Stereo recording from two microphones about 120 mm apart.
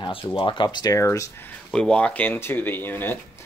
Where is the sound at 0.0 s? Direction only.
45° left (ahead or behind); by 1.3 s 25° left (ahead or behind).